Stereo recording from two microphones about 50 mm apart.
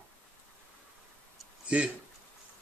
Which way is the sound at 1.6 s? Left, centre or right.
Right.